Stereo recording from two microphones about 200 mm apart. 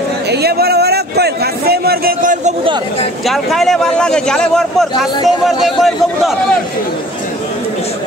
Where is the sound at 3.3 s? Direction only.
Centre (ahead or behind).